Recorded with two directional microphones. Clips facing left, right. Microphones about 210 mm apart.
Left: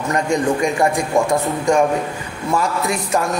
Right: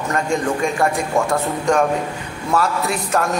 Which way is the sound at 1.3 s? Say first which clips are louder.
Left 2 dB; 10° left (ahead or behind).